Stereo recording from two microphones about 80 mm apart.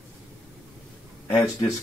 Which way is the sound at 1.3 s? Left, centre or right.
Left.